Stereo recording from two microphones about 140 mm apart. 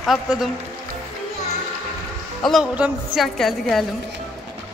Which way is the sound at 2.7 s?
5° right (ahead or behind).